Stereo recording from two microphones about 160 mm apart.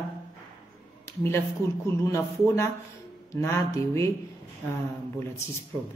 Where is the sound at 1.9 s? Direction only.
20° left (ahead or behind).